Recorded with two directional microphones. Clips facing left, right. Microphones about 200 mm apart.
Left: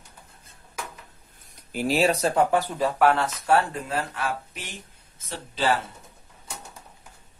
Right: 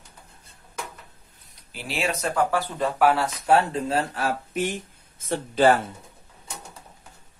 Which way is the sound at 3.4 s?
20° right (ahead or behind).